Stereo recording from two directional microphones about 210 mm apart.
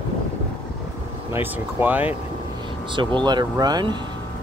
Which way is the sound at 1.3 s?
10° right (ahead or behind).